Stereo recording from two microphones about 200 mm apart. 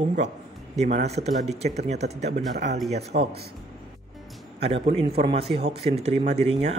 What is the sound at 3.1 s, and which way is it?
Speech, 55° right (ahead or behind).